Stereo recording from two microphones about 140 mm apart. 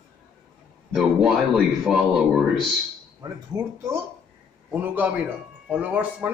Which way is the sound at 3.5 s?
25° right (ahead or behind).